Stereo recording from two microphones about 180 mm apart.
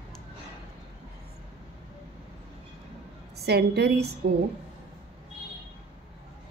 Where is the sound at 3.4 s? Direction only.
65° right (ahead or behind).